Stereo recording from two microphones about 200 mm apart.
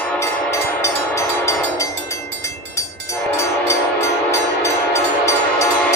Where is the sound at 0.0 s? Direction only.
10° left (ahead or behind).